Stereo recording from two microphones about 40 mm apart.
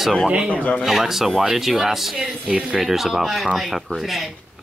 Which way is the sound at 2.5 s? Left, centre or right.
Right.